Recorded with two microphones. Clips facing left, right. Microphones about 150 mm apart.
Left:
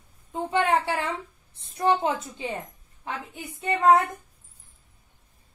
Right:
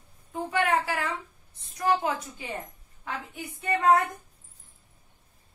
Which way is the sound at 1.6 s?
25° left (ahead or behind).